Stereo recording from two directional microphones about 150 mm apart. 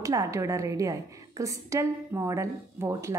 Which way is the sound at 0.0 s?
20° right (ahead or behind).